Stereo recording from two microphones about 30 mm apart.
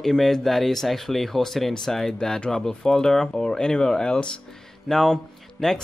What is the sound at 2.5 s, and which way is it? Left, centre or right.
Speech, left.